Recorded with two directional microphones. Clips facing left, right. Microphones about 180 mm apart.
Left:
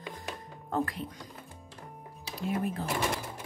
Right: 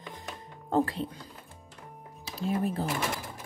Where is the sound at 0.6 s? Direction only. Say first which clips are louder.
Right 5 dB; 30° right (ahead or behind).